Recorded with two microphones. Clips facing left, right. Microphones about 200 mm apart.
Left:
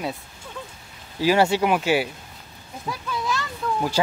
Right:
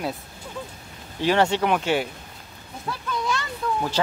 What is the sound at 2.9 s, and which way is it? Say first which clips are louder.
Children playing: even; 5° left (ahead or behind).